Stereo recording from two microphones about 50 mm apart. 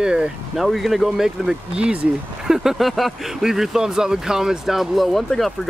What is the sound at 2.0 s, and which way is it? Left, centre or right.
Speech, centre.